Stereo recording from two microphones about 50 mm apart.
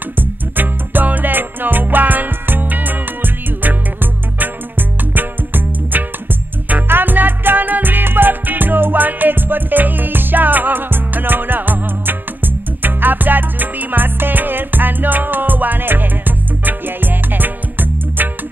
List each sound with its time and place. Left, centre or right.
0.2 s music: right